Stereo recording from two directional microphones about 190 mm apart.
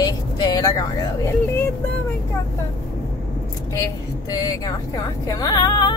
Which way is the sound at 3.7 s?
20° left (ahead or behind).